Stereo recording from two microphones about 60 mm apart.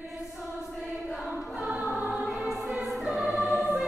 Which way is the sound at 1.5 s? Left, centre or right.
Centre.